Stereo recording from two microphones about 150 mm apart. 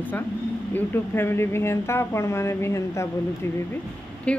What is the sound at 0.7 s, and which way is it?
Speech, 15° left (ahead or behind).